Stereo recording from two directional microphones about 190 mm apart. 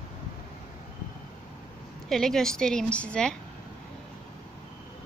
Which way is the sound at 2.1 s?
Centre (ahead or behind).